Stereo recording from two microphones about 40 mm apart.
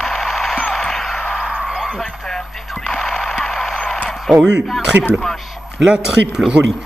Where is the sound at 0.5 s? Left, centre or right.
Left.